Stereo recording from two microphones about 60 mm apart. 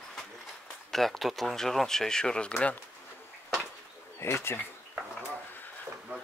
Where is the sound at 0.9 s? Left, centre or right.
Centre.